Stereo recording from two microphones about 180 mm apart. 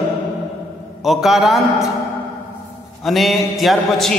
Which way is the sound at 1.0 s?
Centre (ahead or behind).